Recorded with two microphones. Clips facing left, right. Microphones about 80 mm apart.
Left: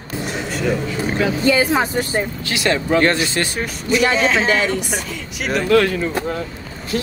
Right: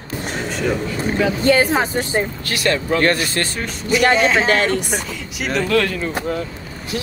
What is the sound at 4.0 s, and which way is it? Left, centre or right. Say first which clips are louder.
Speech: right 2 dB; right.